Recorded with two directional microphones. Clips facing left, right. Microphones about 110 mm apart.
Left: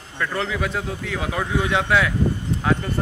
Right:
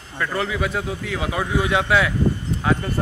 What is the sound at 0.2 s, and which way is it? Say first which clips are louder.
Speech: right 1 dB; 5° right (ahead or behind).